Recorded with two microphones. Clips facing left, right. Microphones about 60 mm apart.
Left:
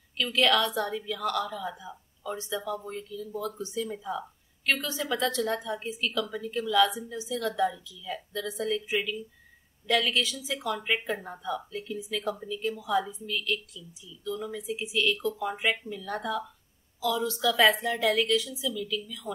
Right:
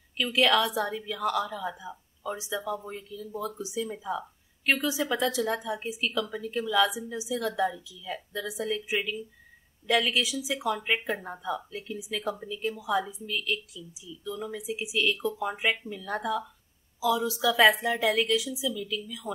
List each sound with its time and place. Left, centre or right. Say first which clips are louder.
0.2 s speech: right 1 dB; centre